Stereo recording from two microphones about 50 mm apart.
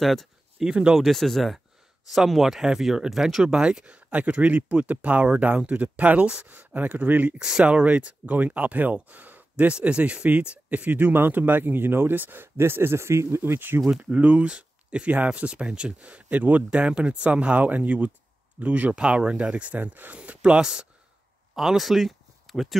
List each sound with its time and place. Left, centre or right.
0.0 s speech: centre; by 7.3 s right
7.3 s speech: centre
7.6 s speech: right
13.4 s speech: right
13.9 s speech: right
18.9 s speech: centre; by 20.2 s right
20.2 s speech: right
21.5 s speech: centre